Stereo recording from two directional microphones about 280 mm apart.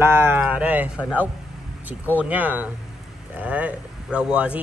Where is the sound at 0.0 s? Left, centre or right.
Centre.